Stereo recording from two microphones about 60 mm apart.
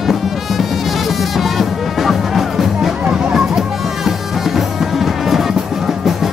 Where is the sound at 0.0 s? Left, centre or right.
Centre.